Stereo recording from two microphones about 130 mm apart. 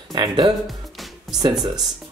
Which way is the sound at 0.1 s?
30° right (ahead or behind).